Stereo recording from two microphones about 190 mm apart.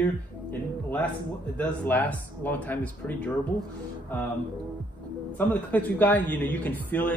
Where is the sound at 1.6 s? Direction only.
10° left (ahead or behind).